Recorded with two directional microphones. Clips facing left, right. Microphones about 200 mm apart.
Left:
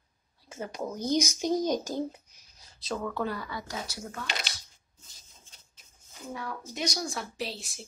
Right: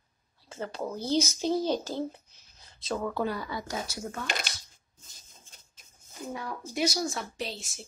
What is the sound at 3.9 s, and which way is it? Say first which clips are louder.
Speech: right 3 dB; 50° right (ahead or behind).